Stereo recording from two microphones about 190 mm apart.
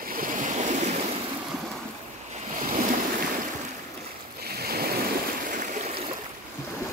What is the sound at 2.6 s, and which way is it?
Waves, 40° right (ahead or behind).